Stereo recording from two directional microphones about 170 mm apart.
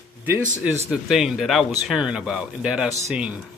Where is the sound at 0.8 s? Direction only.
5° right (ahead or behind).